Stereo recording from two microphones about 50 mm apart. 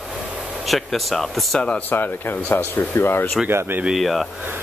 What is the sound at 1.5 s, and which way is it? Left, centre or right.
Speech, left.